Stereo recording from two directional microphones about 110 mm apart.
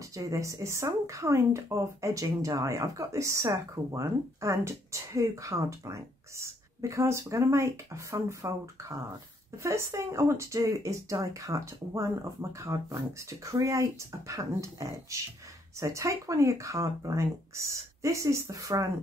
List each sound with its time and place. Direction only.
0.1 s speech: 30° right (ahead or behind)